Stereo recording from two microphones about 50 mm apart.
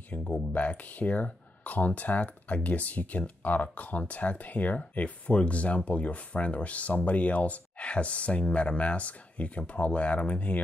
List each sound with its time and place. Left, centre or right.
0.1 s speech: left